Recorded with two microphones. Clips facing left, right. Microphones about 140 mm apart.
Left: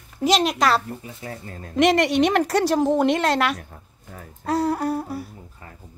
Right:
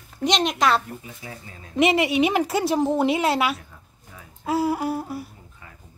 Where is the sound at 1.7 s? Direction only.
5° right (ahead or behind).